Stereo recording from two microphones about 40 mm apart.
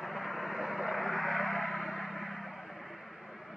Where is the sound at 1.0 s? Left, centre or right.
Centre.